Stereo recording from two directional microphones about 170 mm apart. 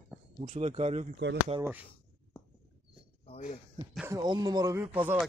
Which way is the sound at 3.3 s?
45° left (ahead or behind).